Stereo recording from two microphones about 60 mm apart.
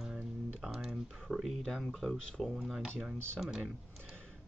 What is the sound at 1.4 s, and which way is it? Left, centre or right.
Speech, centre.